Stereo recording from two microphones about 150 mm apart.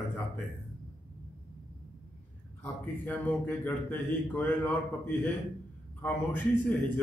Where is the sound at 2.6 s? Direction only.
10° left (ahead or behind).